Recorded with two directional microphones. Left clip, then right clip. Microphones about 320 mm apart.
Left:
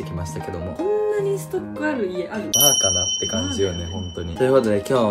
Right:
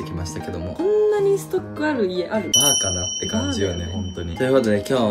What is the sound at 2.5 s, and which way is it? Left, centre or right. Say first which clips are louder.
Speech: left 1 dB; centre.